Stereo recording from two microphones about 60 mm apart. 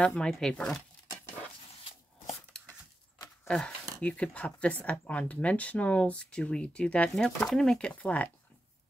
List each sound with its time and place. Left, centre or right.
0.0 s speech: centre
3.4 s speech: centre
7.4 s speech: centre
7.9 s speech: left